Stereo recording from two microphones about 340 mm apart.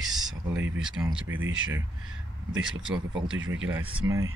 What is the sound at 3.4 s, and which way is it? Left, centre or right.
Speech, right.